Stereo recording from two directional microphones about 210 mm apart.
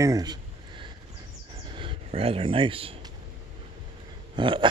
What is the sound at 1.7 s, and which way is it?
Speech, 25° right (ahead or behind).